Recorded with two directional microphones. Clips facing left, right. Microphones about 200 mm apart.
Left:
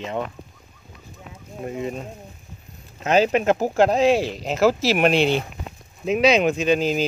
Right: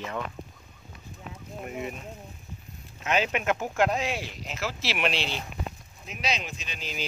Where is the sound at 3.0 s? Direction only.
35° left (ahead or behind); by 5.4 s 55° left (ahead or behind).